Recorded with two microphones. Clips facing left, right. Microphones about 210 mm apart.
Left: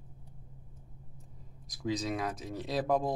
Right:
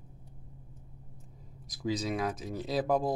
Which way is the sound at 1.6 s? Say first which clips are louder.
Right 1 dB; centre (ahead or behind).